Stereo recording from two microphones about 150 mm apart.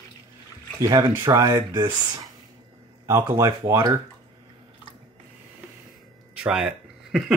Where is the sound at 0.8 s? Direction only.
25° right (ahead or behind).